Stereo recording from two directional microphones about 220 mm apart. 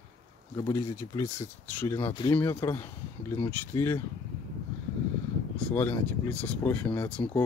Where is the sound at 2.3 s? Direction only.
10° left (ahead or behind).